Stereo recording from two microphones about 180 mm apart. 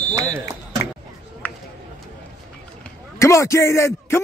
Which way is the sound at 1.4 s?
10° left (ahead or behind).